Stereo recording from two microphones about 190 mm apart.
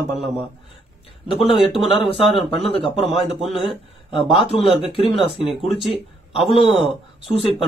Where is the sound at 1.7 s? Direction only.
30° left (ahead or behind).